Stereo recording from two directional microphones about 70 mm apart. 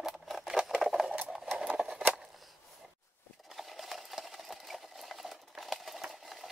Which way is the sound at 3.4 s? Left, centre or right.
Centre.